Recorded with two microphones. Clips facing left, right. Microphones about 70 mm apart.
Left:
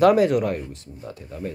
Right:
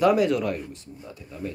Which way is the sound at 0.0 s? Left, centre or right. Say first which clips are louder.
Left 4 dB; left.